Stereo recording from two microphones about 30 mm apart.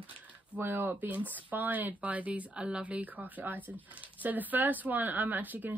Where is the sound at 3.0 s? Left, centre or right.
Right.